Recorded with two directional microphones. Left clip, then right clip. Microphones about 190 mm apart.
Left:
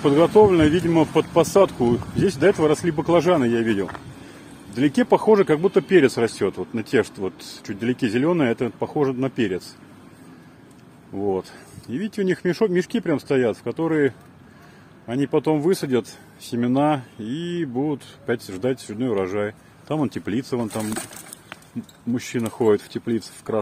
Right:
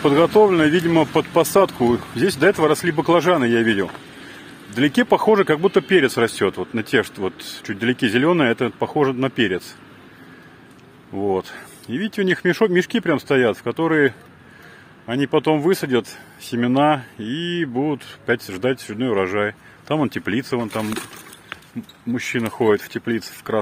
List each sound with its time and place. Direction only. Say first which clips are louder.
0.0 s speech: right 1 dB; 20° right (ahead or behind)
11.1 s speech: right 3 dB; 10° right (ahead or behind)
20.9 s a sound: right 2 dB; 70° left (ahead or behind)
22.1 s speech: right 3 dB; centre (ahead or behind)